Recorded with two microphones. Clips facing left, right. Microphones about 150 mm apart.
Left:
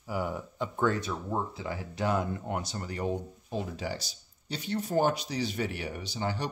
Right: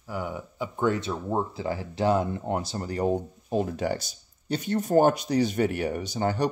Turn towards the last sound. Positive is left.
turn(degrees=-45)  # may be behind; listen again after turning